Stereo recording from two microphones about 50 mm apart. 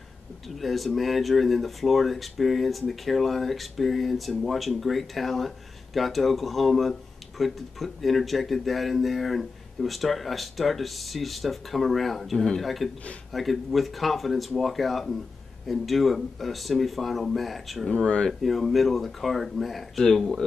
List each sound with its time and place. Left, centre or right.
0.6 s speech: centre
17.8 s speech: centre
18.4 s speech: centre